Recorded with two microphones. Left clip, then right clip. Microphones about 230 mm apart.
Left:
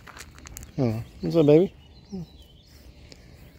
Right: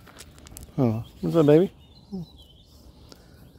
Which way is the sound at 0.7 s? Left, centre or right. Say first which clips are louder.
Right 2 dB; centre.